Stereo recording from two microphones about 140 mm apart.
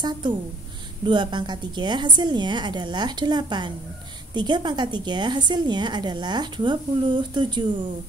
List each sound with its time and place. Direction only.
1.0 s a woman's voice: 35° right (ahead or behind)